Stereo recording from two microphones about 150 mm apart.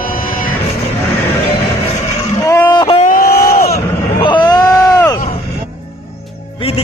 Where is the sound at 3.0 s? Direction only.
70° left (ahead or behind); by 3.8 s 85° left.